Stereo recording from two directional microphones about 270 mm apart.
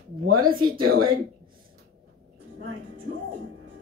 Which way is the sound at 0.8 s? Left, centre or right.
Right.